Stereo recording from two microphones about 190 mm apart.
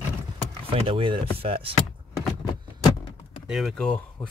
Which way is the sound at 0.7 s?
30° right (ahead or behind).